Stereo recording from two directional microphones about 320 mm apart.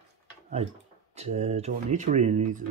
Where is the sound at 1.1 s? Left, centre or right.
Centre.